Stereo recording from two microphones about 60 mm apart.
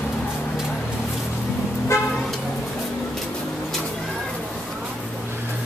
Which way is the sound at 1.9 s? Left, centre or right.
Left.